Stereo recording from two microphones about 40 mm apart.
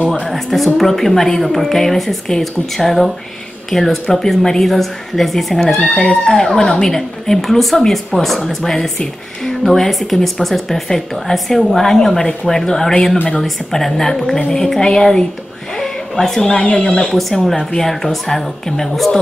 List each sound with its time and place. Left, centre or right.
0.3 s a woman's voice: centre
5.6 s a woman's voice: centre
15.8 s a sound: centre
16.5 s speech: left
17.1 s a woman's voice: centre